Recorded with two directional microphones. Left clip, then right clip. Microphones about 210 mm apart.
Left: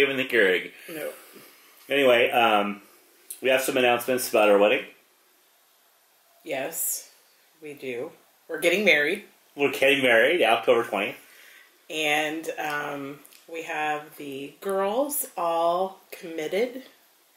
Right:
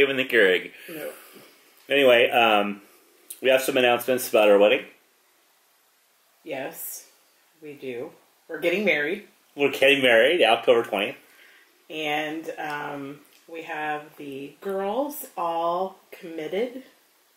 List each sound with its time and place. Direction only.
0.0 s speech: 5° right (ahead or behind)
6.4 s speech: centre (ahead or behind)
15.6 s speech: 20° right (ahead or behind)
16.1 s speech: centre (ahead or behind)